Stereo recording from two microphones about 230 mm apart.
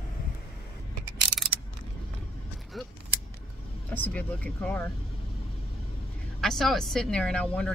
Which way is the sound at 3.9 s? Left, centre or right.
Centre.